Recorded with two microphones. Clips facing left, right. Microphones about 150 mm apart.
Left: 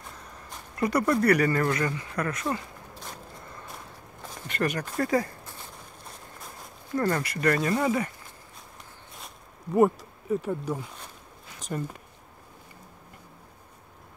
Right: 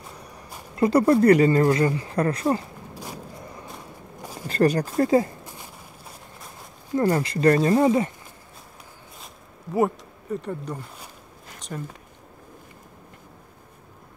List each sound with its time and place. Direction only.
0.7 s speech: 30° right (ahead or behind)
2.9 s a sound: 10° right (ahead or behind)
4.5 s speech: 35° right (ahead or behind); by 5.7 s 15° right (ahead or behind)
7.0 s speech: 25° right (ahead or behind)
9.2 s a sound: centre (ahead or behind)
11.7 s speech: 5° left (ahead or behind)